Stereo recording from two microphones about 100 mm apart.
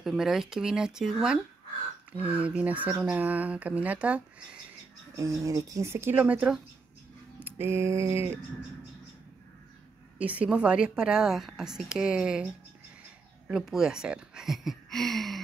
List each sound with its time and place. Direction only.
0.0 s a woman's voice: 5° right (ahead or behind)
5.1 s speech: 30° right (ahead or behind); by 6.6 s 10° right (ahead or behind)
7.4 s speech: 25° right (ahead or behind)
10.1 s a woman's voice: 15° right (ahead or behind)
13.5 s speech: 5° right (ahead or behind)